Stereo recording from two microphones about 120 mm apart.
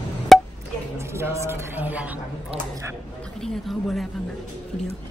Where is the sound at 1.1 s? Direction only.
20° right (ahead or behind).